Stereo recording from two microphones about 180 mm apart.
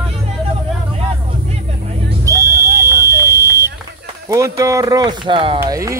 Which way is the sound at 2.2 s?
15° right (ahead or behind).